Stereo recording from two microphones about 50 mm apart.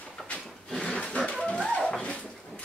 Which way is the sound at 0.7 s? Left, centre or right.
Centre.